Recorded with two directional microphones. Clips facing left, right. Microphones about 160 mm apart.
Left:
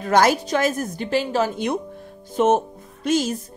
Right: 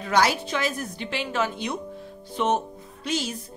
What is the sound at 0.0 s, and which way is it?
A woman's voice, 45° left (ahead or behind).